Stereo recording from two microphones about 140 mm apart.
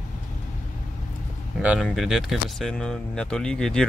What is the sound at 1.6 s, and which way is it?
Speech, 5° right (ahead or behind).